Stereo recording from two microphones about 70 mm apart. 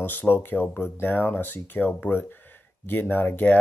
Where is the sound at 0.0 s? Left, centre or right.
Left.